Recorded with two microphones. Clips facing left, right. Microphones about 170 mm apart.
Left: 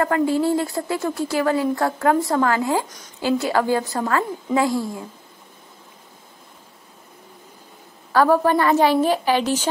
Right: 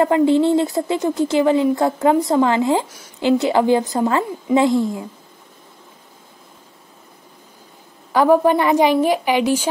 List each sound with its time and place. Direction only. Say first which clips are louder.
0.0 s speech: right 5 dB; 20° right (ahead or behind)
8.1 s a woman's voice: right 3 dB; 15° right (ahead or behind)